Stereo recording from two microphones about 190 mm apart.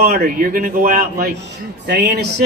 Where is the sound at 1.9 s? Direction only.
60° right (ahead or behind).